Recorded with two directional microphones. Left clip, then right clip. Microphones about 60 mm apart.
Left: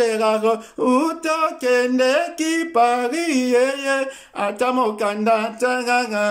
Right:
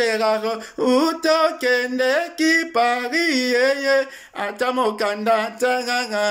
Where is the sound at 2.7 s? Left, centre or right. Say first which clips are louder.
Left 2 dB; left.